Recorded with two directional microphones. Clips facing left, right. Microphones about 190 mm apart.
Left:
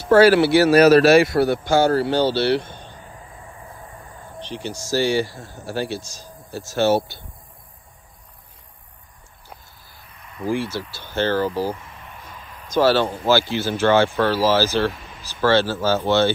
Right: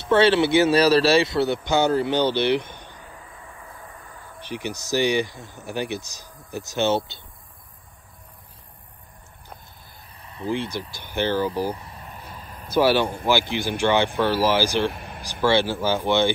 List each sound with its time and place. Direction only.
0.0 s speech: 25° right (ahead or behind)
4.5 s speech: 15° right (ahead or behind)
10.2 s speech: 30° right (ahead or behind); by 11.7 s 15° right (ahead or behind)
11.7 s a sound: 35° right (ahead or behind)
12.6 s speech: 10° right (ahead or behind)
14.9 s vehicle: 55° right (ahead or behind)
15.4 s speech: 15° right (ahead or behind)